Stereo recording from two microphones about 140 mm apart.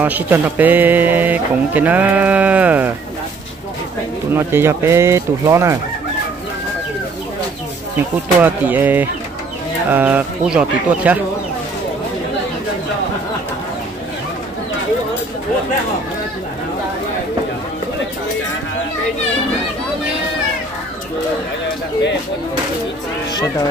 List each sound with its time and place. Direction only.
0.0 s speech: 10° right (ahead or behind)
4.3 s speech: 15° right (ahead or behind)
8.4 s speech: 15° right (ahead or behind)